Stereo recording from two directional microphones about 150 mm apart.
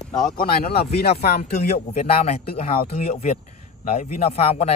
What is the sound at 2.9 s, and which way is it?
Speech, 45° left (ahead or behind).